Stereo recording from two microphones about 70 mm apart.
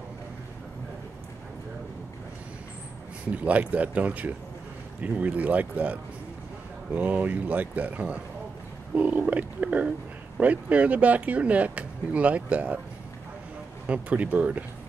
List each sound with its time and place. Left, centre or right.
3.4 s speech: right
13.8 s speech: centre